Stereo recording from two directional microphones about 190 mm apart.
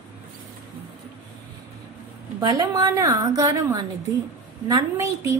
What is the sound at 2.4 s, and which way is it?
A woman's voice, 20° right (ahead or behind).